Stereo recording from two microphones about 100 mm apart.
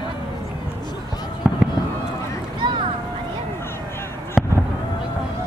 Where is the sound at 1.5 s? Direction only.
5° right (ahead or behind).